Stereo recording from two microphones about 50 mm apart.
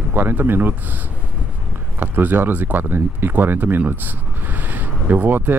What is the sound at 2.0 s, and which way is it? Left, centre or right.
Speech, right.